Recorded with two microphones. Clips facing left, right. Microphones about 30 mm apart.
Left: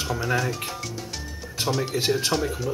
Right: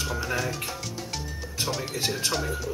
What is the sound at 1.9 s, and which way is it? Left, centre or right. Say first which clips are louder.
Speech: left 5 dB; left.